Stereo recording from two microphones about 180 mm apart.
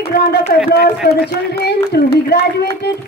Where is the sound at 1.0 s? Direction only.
60° left (ahead or behind).